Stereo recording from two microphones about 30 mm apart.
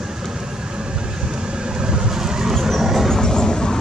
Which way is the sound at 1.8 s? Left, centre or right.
Right.